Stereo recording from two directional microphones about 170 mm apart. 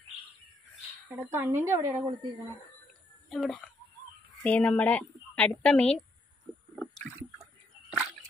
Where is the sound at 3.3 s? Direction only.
Centre (ahead or behind).